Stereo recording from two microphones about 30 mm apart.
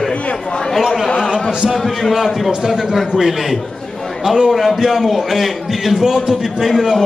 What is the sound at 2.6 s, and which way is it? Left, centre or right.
Speech, centre.